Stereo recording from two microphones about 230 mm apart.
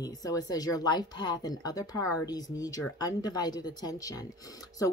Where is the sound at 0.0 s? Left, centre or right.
Centre.